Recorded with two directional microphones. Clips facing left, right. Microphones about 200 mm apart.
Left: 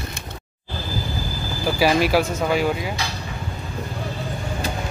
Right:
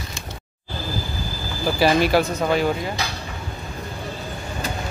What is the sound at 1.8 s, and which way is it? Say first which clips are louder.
Speech: right 1 dB; 10° left (ahead or behind).